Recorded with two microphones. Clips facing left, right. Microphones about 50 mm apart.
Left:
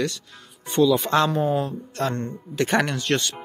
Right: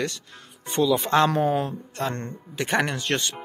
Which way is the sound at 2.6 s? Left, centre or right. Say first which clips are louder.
Left 2 dB; centre.